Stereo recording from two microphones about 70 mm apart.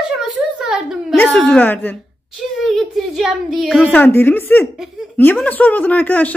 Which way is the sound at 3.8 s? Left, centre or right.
Left.